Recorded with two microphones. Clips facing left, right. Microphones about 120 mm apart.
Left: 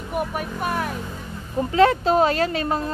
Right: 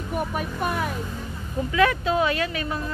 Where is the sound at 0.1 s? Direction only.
5° left (ahead or behind).